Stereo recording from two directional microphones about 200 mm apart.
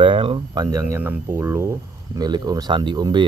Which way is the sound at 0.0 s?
25° right (ahead or behind).